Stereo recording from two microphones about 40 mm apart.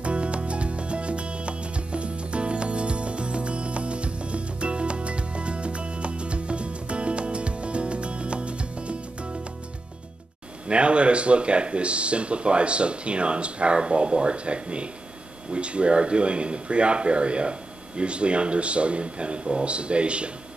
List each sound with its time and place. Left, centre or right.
0.0 s music: right
10.7 s speech: right